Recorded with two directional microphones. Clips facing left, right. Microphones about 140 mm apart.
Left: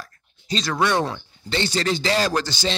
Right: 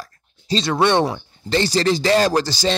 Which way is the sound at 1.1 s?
40° right (ahead or behind).